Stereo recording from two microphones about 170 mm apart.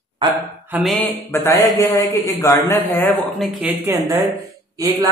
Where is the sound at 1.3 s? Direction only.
15° left (ahead or behind).